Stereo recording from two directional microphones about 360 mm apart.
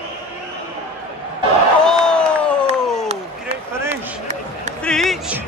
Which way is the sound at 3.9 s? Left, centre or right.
Centre.